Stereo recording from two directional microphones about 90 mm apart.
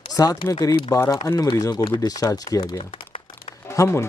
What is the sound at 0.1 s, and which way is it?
Speech, 40° left (ahead or behind).